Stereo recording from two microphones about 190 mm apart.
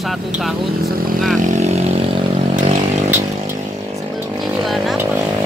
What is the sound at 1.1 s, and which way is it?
Vehicle, centre (ahead or behind).